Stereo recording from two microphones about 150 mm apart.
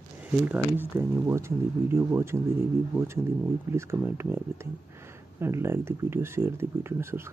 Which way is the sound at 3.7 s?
15° right (ahead or behind).